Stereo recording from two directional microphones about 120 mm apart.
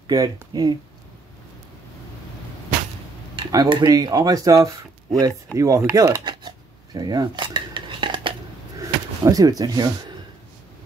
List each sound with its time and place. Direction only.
0.0 s speech: 35° right (ahead or behind)
3.3 s speech: 40° right (ahead or behind)
5.6 s chopping: 25° right (ahead or behind)
6.2 s cutlery: 35° right (ahead or behind)
8.8 s a sound: 30° right (ahead or behind)